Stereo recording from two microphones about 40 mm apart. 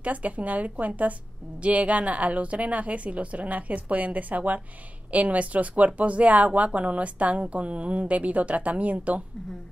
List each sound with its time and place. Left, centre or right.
0.0 s a woman's voice: right